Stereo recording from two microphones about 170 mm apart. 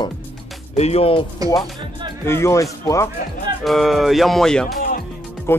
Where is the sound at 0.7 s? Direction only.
40° left (ahead or behind).